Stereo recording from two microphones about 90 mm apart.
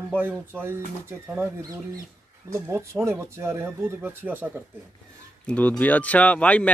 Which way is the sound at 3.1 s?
30° right (ahead or behind).